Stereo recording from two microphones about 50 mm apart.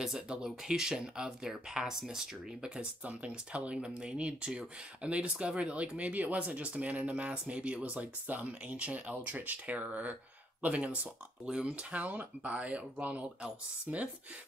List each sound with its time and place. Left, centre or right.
0.0 s speech: centre
2.7 s speech: right